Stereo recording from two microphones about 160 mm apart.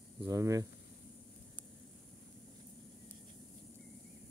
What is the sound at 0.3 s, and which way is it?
Speech, 20° right (ahead or behind).